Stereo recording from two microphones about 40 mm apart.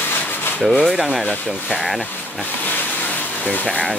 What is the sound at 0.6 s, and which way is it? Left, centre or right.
Speech, centre.